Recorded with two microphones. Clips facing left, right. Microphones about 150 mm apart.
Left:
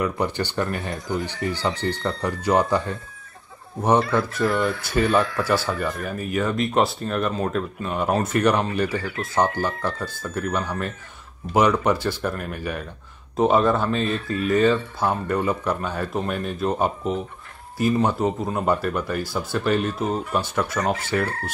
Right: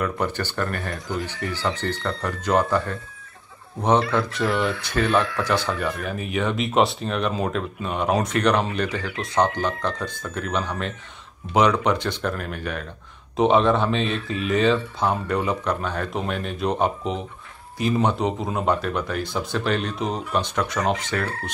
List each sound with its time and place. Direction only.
0.0 s speech: 15° left (ahead or behind)
4.5 s speech: 45° left (ahead or behind)
4.8 s speech: 10° left (ahead or behind)